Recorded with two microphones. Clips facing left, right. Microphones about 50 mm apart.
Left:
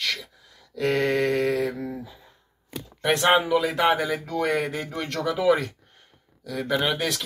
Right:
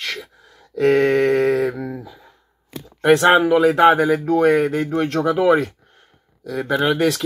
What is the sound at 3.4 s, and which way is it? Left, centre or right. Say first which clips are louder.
Speech: right 8 dB; right.